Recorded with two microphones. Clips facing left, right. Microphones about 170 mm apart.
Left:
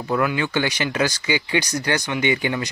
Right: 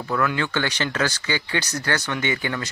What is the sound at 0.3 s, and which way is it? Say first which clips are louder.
Speech: left 2 dB; 10° left (ahead or behind).